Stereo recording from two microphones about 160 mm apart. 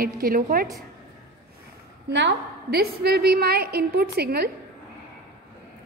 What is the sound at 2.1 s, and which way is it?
A woman's voice, 85° right.